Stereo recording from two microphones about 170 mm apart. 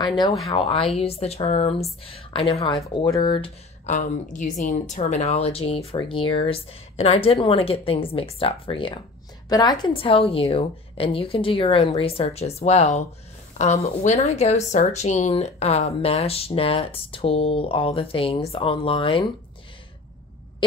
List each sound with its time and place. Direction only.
0.0 s speech: 25° left (ahead or behind)
3.9 s speech: 45° left (ahead or behind); by 19.2 s 30° left (ahead or behind)